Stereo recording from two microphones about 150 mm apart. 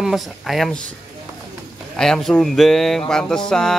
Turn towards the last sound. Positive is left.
turn(degrees=5)  # may be behind; listen again after turning